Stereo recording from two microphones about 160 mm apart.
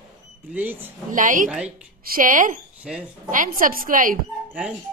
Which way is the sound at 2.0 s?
60° right (ahead or behind).